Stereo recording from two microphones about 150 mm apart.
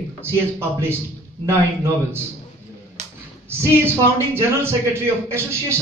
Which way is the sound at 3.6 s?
15° right (ahead or behind).